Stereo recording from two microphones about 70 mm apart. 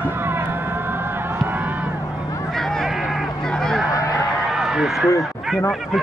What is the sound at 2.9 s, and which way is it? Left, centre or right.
Vehicle, centre.